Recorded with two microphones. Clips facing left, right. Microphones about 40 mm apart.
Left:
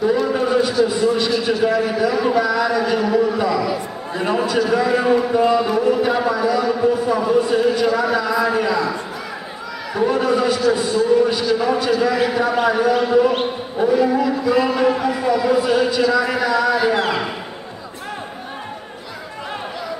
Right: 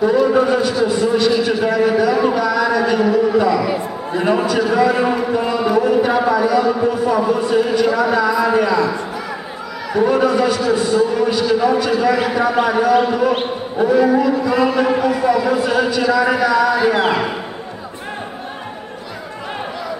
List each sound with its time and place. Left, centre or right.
0.1 s a sound: centre
0.8 s a man's voice: centre
4.2 s a sound: centre
5.6 s a man's voice: centre
10.0 s a man's voice: centre
16.9 s a man's voice: right